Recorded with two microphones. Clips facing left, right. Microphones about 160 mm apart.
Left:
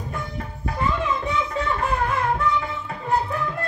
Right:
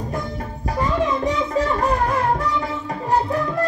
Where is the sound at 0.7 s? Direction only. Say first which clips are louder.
Right 4 dB; 40° right (ahead or behind).